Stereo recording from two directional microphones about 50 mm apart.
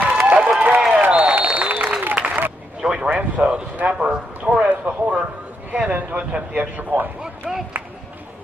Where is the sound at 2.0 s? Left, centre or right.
Right.